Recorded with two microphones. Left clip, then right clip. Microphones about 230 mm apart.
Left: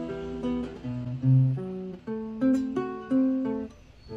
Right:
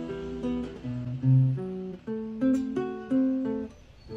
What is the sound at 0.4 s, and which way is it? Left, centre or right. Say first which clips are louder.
Music: left 1 dB; centre.